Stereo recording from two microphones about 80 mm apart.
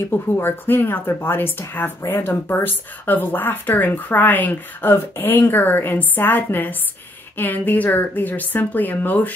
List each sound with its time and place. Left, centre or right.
0.1 s a woman's voice: left